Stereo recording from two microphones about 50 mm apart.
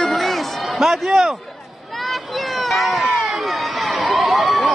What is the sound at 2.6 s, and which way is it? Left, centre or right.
Cat, centre.